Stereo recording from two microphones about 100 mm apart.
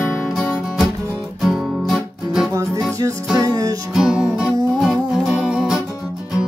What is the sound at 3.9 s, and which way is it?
Music, 5° right (ahead or behind).